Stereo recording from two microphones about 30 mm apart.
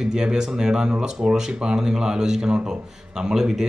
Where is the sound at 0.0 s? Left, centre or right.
Right.